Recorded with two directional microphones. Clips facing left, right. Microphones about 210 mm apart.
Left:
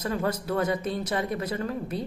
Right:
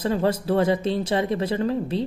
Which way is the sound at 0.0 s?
30° right (ahead or behind).